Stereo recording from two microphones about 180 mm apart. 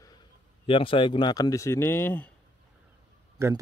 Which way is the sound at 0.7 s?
30° left (ahead or behind).